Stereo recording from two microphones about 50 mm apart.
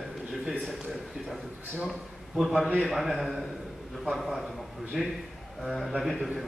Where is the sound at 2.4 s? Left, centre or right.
Centre.